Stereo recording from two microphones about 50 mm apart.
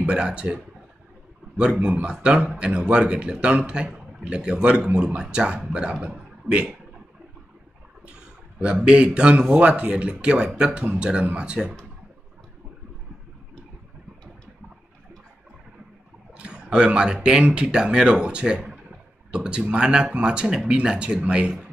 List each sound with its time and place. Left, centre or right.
0.0 s speech: right
1.6 s speech: centre
8.8 s speech: right
16.3 s speech: right